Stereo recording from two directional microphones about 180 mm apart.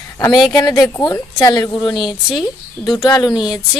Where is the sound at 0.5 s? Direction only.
20° left (ahead or behind).